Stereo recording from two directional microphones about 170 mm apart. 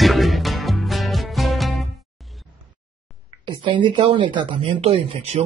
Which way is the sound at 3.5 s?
30° right (ahead or behind).